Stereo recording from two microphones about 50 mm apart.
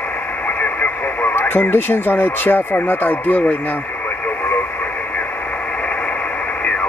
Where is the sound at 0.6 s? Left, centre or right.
Left.